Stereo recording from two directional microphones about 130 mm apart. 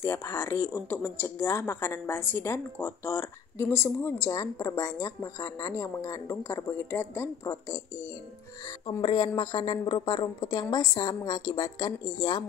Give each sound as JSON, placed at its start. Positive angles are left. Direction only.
{"t": 0.0, "sound": "speech", "side_deg": 20}
{"t": 8.8, "sound": "a woman's voice", "side_deg": 40}